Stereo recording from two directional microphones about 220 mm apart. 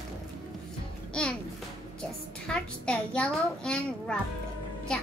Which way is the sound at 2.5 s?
5° left (ahead or behind).